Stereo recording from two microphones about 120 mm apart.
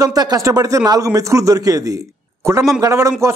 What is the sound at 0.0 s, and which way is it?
A man's voice, 30° right (ahead or behind).